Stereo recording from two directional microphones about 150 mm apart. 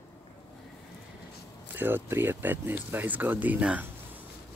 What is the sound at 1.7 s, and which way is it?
Speech, 15° right (ahead or behind).